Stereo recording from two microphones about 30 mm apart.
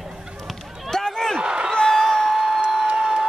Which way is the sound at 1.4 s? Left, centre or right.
Right.